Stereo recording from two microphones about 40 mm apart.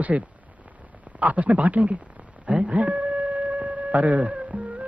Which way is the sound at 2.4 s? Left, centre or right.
Right.